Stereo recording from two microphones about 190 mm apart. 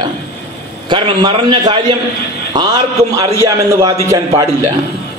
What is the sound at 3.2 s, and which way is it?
Speech, 15° right (ahead or behind).